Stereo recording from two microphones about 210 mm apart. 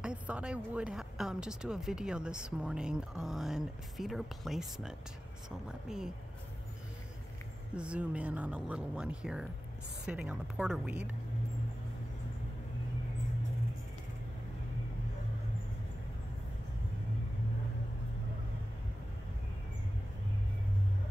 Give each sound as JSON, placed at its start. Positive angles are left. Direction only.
{"t": 0.0, "sound": "a woman's voice", "side_deg": -5}
{"t": 7.7, "sound": "a woman's voice", "side_deg": -5}